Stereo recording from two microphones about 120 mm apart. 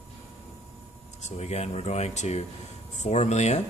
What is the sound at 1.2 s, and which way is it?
Speech, 65° left (ahead or behind).